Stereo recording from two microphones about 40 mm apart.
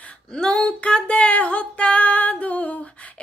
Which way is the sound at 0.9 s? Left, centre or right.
Left.